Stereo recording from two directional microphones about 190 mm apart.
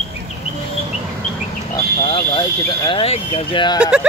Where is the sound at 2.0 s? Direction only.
30° left (ahead or behind).